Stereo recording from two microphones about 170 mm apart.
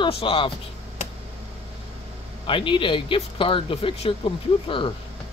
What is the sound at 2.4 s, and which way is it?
Speech, 30° left (ahead or behind).